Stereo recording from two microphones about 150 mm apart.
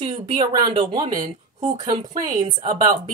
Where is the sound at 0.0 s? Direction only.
35° right (ahead or behind).